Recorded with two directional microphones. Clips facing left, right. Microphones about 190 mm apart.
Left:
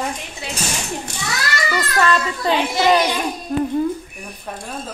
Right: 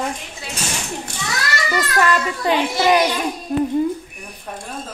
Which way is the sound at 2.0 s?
15° right (ahead or behind).